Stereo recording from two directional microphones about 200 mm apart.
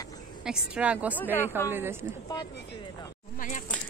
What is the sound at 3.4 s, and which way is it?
Speech, 40° left (ahead or behind).